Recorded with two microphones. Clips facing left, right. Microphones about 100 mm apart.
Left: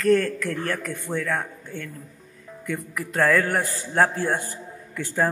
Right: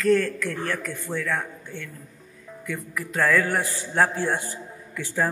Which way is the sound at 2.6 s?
Centre (ahead or behind).